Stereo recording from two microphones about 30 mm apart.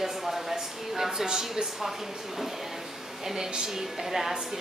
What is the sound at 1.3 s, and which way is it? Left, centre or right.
Speech, right.